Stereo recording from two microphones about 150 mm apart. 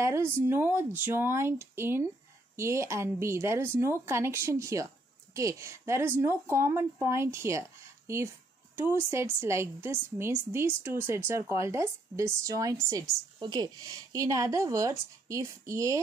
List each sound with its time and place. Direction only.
0.0 s a woman's voice: 20° right (ahead or behind)